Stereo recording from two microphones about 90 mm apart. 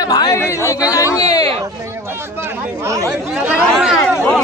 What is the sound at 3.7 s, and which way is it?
Speech, 5° right (ahead or behind).